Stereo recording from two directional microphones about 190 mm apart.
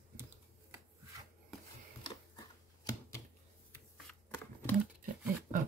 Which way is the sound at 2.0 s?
20° left (ahead or behind).